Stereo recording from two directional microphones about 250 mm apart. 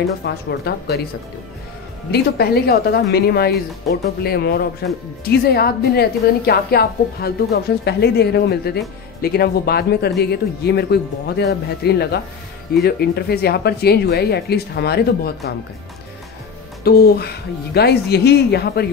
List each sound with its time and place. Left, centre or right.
0.2 s speech: left
2.0 s speech: left
16.8 s speech: left